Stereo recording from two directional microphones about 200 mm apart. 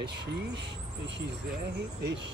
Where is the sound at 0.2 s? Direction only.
60° right (ahead or behind).